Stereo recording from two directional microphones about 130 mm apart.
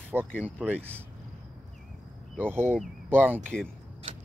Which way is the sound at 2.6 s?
10° left (ahead or behind).